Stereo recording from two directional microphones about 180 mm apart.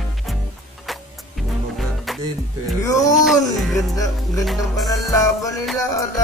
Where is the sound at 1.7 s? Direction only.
Centre (ahead or behind).